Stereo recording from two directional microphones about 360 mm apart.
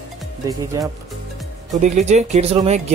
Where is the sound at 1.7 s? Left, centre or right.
Centre.